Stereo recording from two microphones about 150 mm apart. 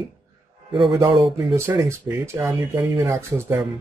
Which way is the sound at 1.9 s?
15° right (ahead or behind).